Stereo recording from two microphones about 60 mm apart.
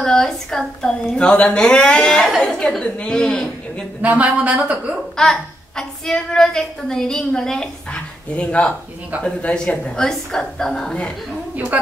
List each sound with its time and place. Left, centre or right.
0.0 s a woman's voice: centre
4.0 s a woman's voice: right
5.1 s a woman's voice: centre